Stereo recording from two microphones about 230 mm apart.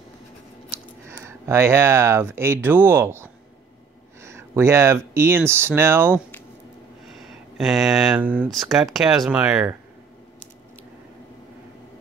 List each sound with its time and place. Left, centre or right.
1.0 s speech: centre
7.5 s speech: centre